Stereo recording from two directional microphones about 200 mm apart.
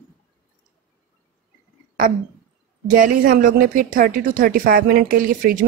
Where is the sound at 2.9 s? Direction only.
40° right (ahead or behind).